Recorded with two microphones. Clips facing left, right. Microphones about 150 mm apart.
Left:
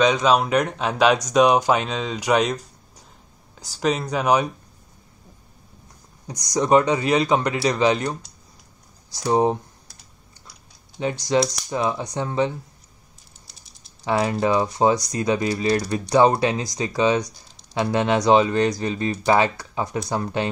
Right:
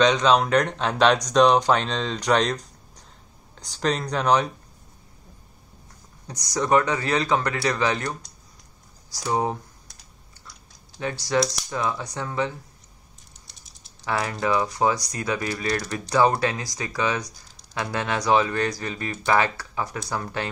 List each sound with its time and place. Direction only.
0.0 s speech: 5° left (ahead or behind)
6.2 s speech: 15° left (ahead or behind)
11.0 s speech: 20° left (ahead or behind)
13.5 s typing: centre (ahead or behind)
14.0 s speech: 25° left (ahead or behind)